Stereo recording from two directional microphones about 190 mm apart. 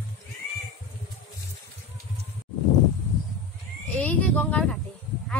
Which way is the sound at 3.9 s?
5° left (ahead or behind).